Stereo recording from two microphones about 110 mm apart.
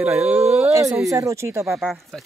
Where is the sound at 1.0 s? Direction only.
30° right (ahead or behind).